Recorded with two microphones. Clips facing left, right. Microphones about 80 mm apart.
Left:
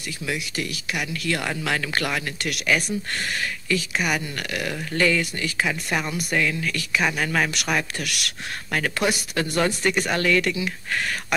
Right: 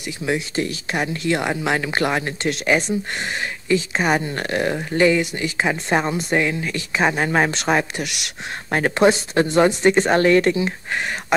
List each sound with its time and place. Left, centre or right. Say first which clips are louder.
0.2 s speech: right 7 dB; right